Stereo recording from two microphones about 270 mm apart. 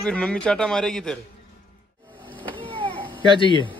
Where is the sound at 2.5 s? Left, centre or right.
Centre.